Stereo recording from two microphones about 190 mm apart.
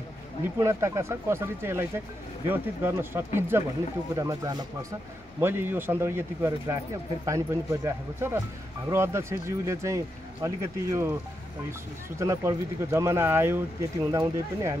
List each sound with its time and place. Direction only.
0.6 s speech: 15° right (ahead or behind)
12.2 s speech: 15° right (ahead or behind)